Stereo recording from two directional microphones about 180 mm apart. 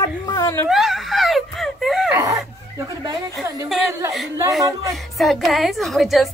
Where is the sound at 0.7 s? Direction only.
Centre (ahead or behind).